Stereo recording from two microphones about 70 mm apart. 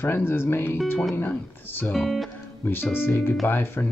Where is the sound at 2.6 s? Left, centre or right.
Left.